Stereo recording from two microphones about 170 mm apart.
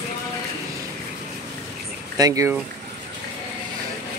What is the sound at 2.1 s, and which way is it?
Speech, 20° right (ahead or behind).